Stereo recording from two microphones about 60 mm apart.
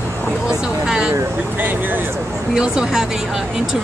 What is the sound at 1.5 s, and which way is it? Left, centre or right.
Speech, right.